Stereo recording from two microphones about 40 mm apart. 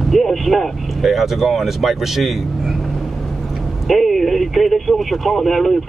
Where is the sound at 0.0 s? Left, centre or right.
Centre.